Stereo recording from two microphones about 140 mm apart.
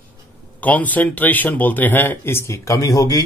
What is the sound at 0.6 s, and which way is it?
Speech, 10° left (ahead or behind).